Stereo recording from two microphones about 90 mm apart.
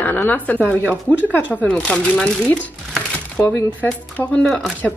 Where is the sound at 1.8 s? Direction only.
5° left (ahead or behind).